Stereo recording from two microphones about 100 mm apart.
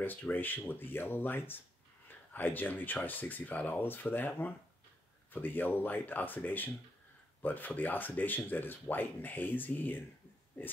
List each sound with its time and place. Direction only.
0.0 s speech: 20° left (ahead or behind)